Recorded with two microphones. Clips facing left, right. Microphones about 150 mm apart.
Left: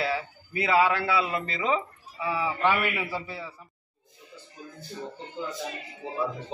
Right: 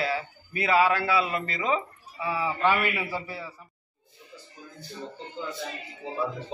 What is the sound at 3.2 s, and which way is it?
Speech, 20° left (ahead or behind).